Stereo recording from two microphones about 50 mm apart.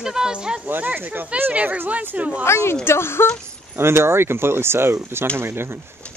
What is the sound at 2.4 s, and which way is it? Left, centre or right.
Speech, left.